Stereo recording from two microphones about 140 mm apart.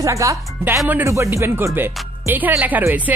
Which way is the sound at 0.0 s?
20° right (ahead or behind).